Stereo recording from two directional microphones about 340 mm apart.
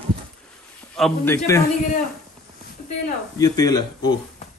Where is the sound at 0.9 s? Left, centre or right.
Centre.